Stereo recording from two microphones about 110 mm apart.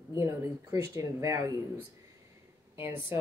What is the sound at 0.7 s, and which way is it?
Speech, 30° right (ahead or behind).